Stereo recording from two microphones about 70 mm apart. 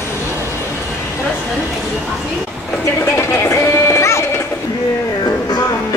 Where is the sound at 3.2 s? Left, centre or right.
Left.